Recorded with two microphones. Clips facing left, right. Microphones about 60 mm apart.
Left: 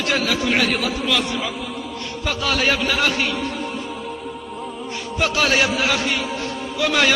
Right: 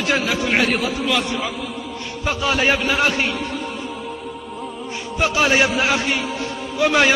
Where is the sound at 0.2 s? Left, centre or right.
Right.